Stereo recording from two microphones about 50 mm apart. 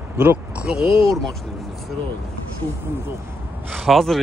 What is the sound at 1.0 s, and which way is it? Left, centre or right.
Speech, centre.